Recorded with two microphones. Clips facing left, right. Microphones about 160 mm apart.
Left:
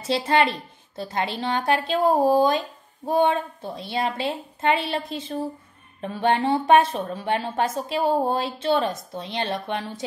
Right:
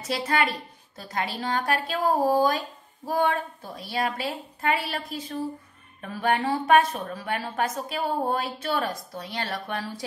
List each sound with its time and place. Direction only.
0.0 s a woman's voice: 25° left (ahead or behind)